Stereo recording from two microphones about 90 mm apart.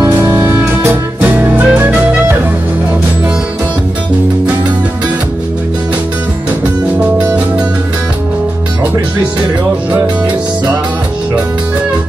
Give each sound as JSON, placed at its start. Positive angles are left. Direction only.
{"t": 0.0, "sound": "music", "side_deg": -20}